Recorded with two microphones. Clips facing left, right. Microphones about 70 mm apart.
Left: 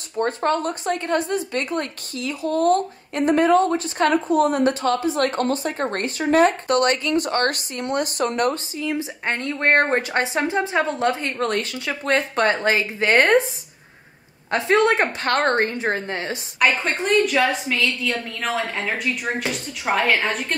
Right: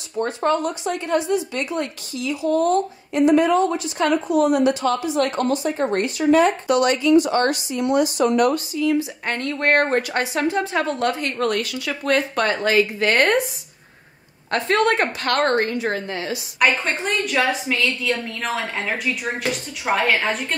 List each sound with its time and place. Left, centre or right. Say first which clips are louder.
0.2 s a woman's voice: even; left
14.5 s a woman's voice: left 1 dB; centre; by 16.3 s left
16.5 s a woman's voice: even; centre